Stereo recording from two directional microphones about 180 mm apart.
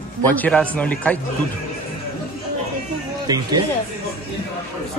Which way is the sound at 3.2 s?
20° right (ahead or behind).